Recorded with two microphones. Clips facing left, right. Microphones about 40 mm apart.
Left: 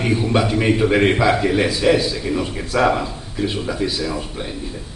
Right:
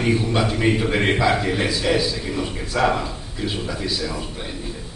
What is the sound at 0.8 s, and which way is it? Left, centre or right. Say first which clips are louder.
A man's voice: left 4 dB; centre.